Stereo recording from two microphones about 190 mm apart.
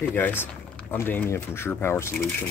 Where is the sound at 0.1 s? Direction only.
10° left (ahead or behind).